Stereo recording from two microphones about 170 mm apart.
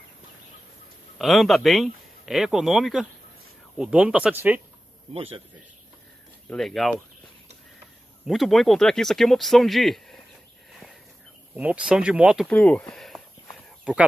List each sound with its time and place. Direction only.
1.1 s speech: centre (ahead or behind)
5.1 s speech: 35° right (ahead or behind)
6.5 s speech: centre (ahead or behind)
8.3 s speech: centre (ahead or behind)
10.7 s a sound: centre (ahead or behind)
11.5 s speech: 10° right (ahead or behind)
12.4 s speech: 10° left (ahead or behind)
12.9 s a sound: centre (ahead or behind)